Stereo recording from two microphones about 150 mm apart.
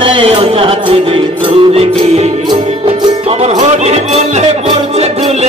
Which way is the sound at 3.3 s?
45° right (ahead or behind).